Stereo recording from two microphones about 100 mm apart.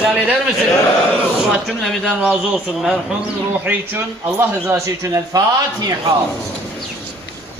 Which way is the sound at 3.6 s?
20° right (ahead or behind).